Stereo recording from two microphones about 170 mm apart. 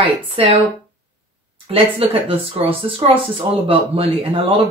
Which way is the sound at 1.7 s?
35° right (ahead or behind).